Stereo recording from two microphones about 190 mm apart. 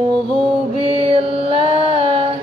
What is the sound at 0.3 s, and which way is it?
Mantra, 30° right (ahead or behind).